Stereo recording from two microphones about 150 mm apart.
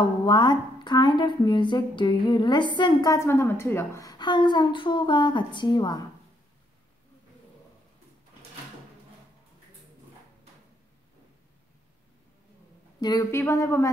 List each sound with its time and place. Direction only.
0.2 s a woman's voice: 30° left (ahead or behind)
13.0 s speech: 25° left (ahead or behind)